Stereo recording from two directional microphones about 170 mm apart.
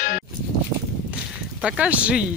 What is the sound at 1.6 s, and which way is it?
Speech, 5° right (ahead or behind).